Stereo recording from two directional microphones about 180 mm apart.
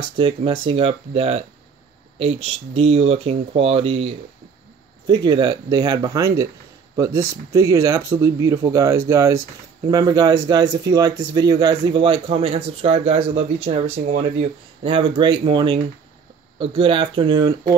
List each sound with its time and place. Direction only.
0.2 s speech: 30° right (ahead or behind)